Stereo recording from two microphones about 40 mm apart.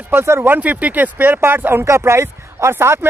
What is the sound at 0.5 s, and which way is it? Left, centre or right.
Speech, right.